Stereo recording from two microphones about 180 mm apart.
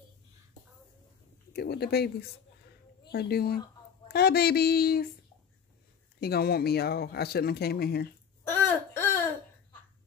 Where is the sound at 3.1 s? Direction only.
60° left (ahead or behind).